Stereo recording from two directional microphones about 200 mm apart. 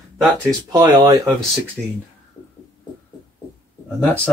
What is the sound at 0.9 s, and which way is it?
Speech, 20° right (ahead or behind).